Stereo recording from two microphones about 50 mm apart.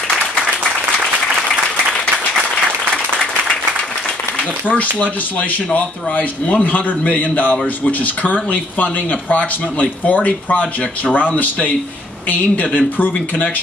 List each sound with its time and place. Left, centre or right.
4.4 s speech: left